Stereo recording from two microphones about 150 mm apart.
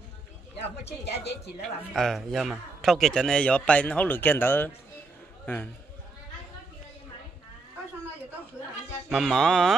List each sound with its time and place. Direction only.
0.6 s speech: 45° left (ahead or behind)
2.0 s a man's voice: centre (ahead or behind)
9.1 s music: centre (ahead or behind)